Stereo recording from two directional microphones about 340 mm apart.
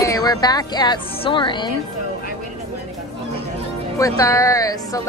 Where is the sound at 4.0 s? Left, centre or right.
Centre.